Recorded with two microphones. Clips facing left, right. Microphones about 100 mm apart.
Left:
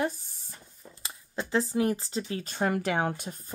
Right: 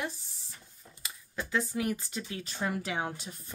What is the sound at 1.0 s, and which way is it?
Speech, 30° left (ahead or behind).